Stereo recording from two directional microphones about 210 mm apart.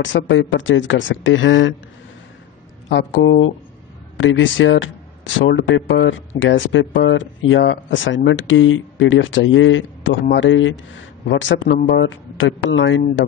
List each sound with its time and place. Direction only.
0.0 s speech: 60° left (ahead or behind)
2.9 s speech: 55° left (ahead or behind)